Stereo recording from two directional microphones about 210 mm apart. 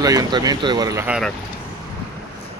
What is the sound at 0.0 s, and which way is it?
Speech, 15° right (ahead or behind).